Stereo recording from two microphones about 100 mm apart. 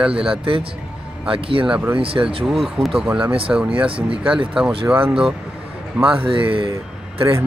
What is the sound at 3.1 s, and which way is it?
Speech, 10° right (ahead or behind).